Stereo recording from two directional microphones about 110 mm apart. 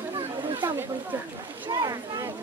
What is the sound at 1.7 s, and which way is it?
Speech, 35° right (ahead or behind).